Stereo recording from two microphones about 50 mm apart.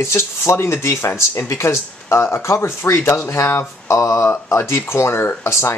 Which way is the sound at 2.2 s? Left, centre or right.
Left.